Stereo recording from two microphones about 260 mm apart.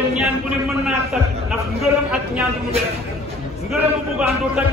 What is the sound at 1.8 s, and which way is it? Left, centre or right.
Speech, centre.